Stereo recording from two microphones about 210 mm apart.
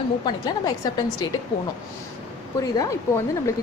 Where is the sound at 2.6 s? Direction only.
15° left (ahead or behind).